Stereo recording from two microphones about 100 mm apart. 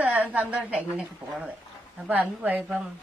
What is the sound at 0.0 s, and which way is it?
A woman's voice, 15° right (ahead or behind).